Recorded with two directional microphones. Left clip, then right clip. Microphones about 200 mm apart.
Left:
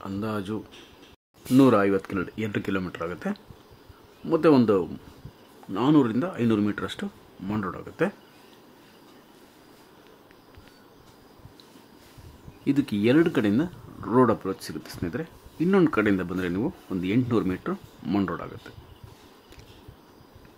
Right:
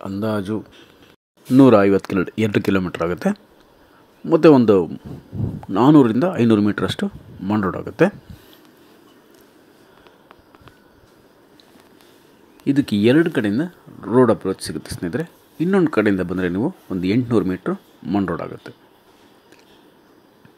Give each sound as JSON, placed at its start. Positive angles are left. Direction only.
{"t": 0.0, "sound": "speech", "side_deg": -15}
{"t": 12.6, "sound": "speech", "side_deg": -15}
{"t": 18.0, "sound": "speech", "side_deg": 0}
{"t": 18.3, "sound": "speech", "side_deg": -20}